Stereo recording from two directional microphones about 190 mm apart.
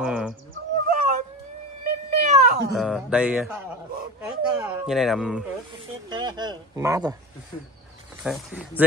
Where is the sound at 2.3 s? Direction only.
35° right (ahead or behind).